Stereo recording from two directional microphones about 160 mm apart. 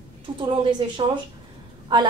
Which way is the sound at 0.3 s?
30° right (ahead or behind).